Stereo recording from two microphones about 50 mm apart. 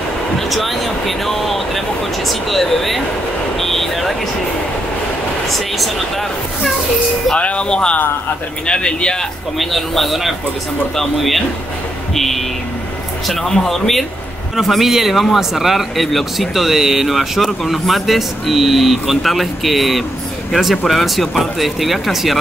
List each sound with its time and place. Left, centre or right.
0.4 s speech: centre
5.8 s speech: centre
7.3 s speech: left
9.6 s speech: centre